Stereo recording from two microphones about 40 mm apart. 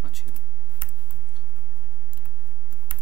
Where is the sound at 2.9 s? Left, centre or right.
Left.